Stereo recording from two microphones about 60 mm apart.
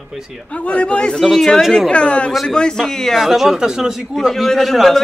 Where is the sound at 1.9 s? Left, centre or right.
Centre.